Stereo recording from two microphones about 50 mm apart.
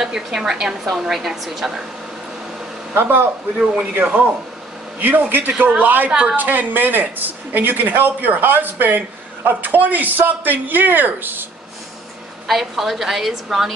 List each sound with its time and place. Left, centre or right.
0.0 s a woman's voice: centre
2.9 s speech: right
3.5 s a woman's voice: centre
3.9 s speech: right
12.4 s a woman's voice: centre